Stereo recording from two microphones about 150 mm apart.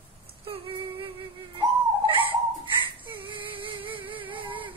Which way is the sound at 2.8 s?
35° right (ahead or behind).